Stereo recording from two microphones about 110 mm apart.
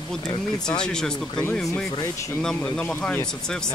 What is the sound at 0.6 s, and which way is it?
Speech, 5° left (ahead or behind).